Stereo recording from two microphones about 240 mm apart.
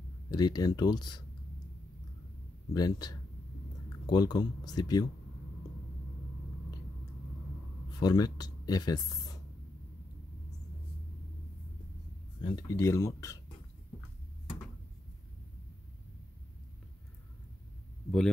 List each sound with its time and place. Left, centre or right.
0.3 s speech: centre
2.7 s speech: centre
8.0 s speech: centre
12.4 s speech: centre